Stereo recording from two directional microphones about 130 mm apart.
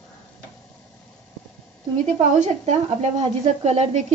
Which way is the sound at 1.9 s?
70° right (ahead or behind).